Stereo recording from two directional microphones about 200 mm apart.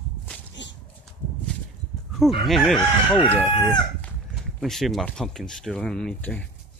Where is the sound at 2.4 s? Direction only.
Centre (ahead or behind).